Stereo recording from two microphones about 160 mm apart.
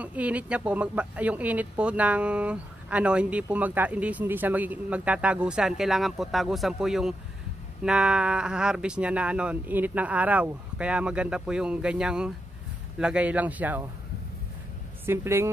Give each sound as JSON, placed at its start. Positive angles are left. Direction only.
{"t": 0.0, "sound": "speech", "side_deg": -10}
{"t": 15.0, "sound": "speech", "side_deg": -15}